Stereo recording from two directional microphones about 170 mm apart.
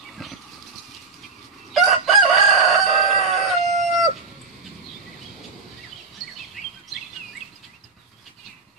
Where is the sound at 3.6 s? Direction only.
40° right (ahead or behind).